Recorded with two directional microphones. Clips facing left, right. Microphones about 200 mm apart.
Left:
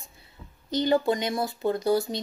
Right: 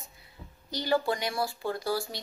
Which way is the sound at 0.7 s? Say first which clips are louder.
Left 5 dB; 20° left (ahead or behind).